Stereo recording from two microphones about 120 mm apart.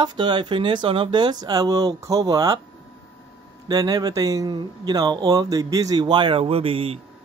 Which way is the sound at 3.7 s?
30° right (ahead or behind).